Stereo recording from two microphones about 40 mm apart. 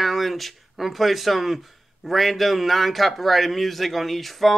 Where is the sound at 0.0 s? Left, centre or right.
Centre.